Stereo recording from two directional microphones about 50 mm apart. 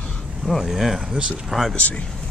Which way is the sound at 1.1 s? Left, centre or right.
Centre.